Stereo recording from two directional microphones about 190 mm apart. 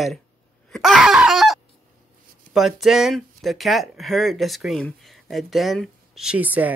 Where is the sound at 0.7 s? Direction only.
Centre (ahead or behind).